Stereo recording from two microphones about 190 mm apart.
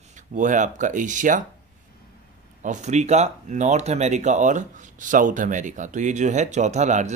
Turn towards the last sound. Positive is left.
turn(degrees=-40)  # may be behind; listen again after turning